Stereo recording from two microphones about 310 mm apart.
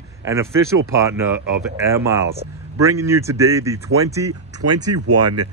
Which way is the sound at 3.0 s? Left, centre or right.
Centre.